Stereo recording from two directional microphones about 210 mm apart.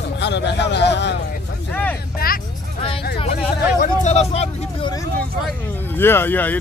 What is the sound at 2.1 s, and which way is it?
Vehicle, 45° left (ahead or behind).